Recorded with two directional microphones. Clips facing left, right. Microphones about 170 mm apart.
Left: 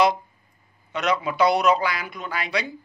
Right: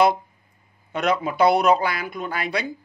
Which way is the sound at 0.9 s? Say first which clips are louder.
Right 1 dB; 50° right (ahead or behind).